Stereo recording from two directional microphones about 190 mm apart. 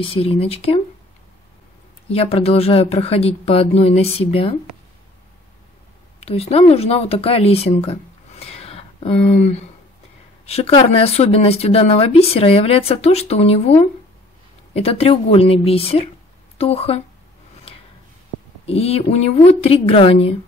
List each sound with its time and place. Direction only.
0.0 s speech: 30° left (ahead or behind)
2.0 s speech: 30° left (ahead or behind)
6.1 s speech: 30° left (ahead or behind)
18.7 s speech: 30° left (ahead or behind)